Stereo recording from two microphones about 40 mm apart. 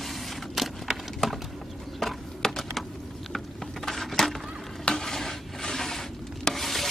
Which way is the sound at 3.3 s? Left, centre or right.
Centre.